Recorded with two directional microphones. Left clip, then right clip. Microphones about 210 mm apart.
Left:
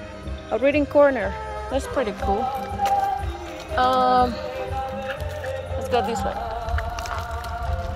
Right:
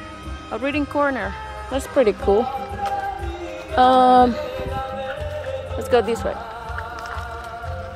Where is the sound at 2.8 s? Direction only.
55° left (ahead or behind).